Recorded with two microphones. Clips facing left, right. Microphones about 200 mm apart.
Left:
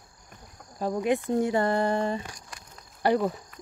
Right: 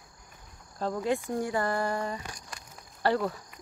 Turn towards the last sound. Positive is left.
turn(degrees=15)  # may be behind; listen again after turning